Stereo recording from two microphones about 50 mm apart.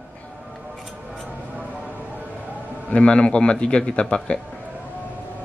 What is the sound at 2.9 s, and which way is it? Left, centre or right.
A man's voice, left.